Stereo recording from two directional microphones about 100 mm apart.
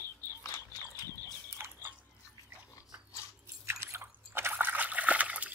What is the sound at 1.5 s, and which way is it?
Biting, 25° right (ahead or behind).